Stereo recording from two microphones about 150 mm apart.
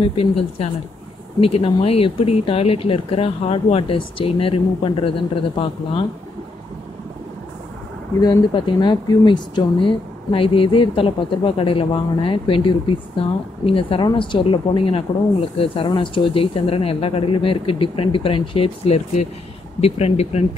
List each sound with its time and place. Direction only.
0.0 s speech: 40° left (ahead or behind)
8.2 s speech: 30° left (ahead or behind)